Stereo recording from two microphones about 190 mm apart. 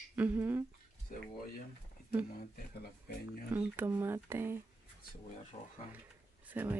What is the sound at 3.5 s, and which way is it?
Speech, 10° right (ahead or behind).